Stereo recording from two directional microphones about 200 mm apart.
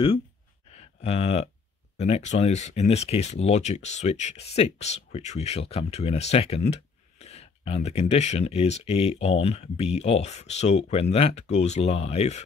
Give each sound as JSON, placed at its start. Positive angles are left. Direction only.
{"t": 0.7, "sound": "speech", "side_deg": 30}